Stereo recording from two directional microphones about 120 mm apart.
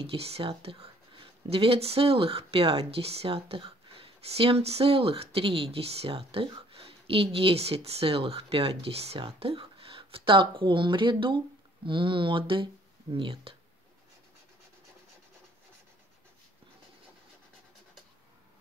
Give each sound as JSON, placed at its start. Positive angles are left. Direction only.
{"t": 0.0, "sound": "speech", "side_deg": -55}